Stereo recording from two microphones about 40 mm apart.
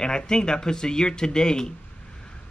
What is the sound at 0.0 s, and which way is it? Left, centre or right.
Speech, centre.